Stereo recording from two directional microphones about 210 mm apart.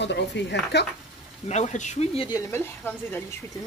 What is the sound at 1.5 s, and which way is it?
Speech, 35° left (ahead or behind).